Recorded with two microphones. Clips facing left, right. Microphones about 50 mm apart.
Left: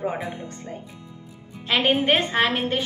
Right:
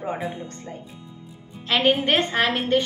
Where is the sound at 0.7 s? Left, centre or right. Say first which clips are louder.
Left 1 dB; centre.